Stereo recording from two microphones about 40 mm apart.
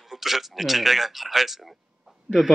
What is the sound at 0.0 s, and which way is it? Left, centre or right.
Speech, centre.